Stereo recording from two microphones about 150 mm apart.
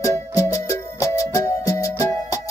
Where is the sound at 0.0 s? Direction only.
20° left (ahead or behind).